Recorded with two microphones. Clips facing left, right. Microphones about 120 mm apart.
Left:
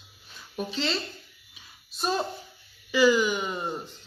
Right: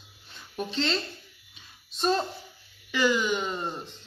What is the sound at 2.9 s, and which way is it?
A woman's voice, 10° left (ahead or behind).